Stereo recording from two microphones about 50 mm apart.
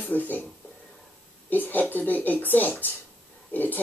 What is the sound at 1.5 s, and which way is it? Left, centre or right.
Speech, left.